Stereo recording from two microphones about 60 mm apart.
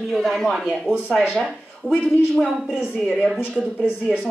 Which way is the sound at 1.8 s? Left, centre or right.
Left.